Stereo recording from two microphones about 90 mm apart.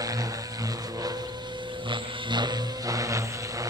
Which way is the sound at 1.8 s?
60° right (ahead or behind).